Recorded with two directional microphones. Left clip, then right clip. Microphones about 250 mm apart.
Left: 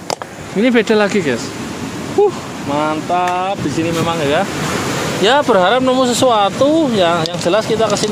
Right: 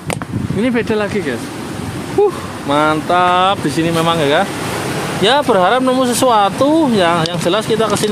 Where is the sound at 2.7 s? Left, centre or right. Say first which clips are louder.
Right 3 dB; centre.